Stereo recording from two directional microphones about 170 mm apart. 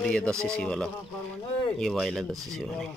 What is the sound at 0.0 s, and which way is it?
Speech, 5° left (ahead or behind).